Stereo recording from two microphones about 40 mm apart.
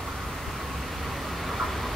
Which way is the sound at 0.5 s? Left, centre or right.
Centre.